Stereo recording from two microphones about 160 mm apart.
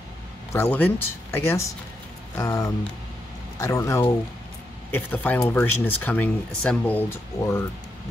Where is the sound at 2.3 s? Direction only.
20° left (ahead or behind).